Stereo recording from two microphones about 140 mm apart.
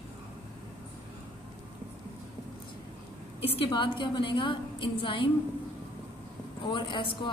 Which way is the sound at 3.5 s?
35° left (ahead or behind).